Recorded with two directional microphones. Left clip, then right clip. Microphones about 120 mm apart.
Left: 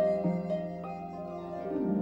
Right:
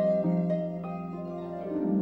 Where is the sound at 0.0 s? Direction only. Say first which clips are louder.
Right 2 dB; centre (ahead or behind).